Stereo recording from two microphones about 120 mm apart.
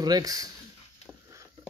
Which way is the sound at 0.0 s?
30° right (ahead or behind).